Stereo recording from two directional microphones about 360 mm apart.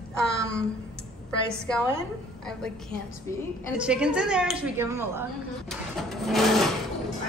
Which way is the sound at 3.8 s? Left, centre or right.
Centre.